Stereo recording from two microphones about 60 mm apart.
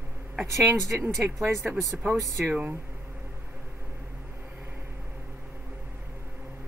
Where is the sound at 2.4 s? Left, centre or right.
Right.